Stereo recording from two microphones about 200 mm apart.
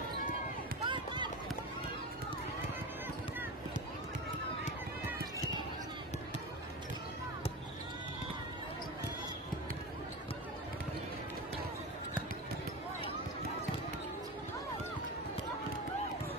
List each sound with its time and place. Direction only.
0.8 s run: 25° right (ahead or behind)